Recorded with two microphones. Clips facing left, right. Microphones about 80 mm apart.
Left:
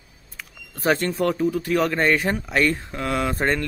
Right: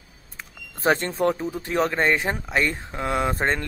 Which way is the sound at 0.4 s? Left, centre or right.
Right.